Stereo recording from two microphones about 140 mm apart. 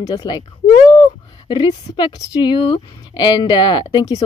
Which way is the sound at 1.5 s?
35° left (ahead or behind).